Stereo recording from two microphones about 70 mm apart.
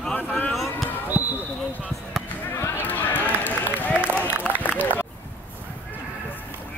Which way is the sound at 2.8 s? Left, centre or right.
Left.